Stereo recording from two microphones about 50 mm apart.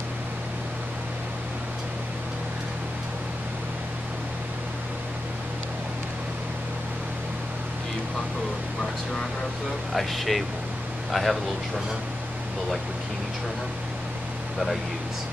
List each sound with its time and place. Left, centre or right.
9.9 s speech: centre